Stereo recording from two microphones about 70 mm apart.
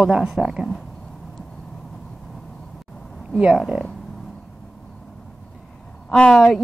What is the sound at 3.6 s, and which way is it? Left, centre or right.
Speech, centre.